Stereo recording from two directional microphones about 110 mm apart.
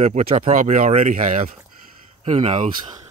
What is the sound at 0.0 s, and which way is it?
Speech, 75° right (ahead or behind).